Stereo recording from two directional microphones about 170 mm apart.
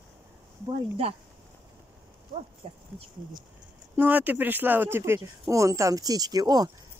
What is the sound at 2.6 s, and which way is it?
Speech, 35° right (ahead or behind).